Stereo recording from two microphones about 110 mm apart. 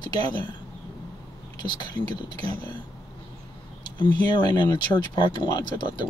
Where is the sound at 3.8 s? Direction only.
45° left (ahead or behind).